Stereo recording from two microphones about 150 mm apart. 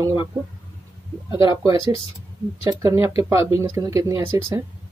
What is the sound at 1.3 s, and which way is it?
Speech, 35° left (ahead or behind).